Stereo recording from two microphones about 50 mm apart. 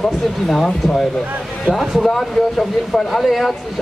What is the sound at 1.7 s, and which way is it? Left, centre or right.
Speech, centre.